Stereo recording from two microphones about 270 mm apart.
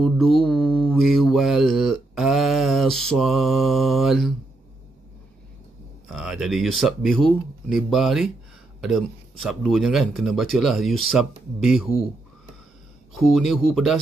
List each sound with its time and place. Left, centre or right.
0.0 s mantra: centre
6.0 s speech: centre
9.4 s speech: centre
13.1 s speech: centre